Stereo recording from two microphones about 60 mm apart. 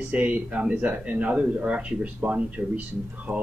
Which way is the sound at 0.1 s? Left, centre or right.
Right.